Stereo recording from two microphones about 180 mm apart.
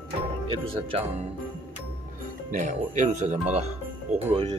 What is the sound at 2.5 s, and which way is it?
Speech, 45° right (ahead or behind).